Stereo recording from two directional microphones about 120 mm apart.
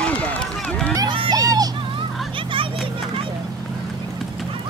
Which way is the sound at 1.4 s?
30° right (ahead or behind).